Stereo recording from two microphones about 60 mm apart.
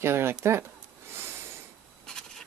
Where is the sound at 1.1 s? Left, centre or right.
Right.